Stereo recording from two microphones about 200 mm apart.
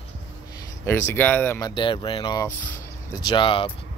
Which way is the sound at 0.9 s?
10° left (ahead or behind).